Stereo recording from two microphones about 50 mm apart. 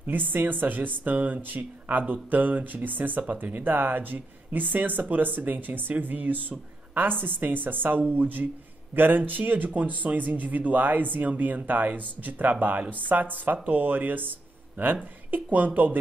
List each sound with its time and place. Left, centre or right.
0.0 s speech: right